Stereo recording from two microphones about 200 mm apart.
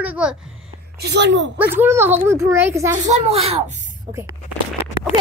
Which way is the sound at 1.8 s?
10° right (ahead or behind).